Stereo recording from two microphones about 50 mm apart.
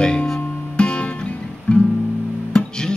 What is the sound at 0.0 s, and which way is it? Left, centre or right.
Music, centre.